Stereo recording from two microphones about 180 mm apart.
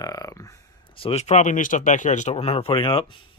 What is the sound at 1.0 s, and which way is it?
Speech, 35° left (ahead or behind).